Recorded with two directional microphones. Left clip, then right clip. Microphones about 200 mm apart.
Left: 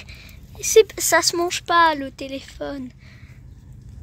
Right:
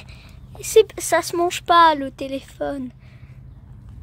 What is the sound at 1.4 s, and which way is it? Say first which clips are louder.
Speech: right 3 dB; 20° right (ahead or behind).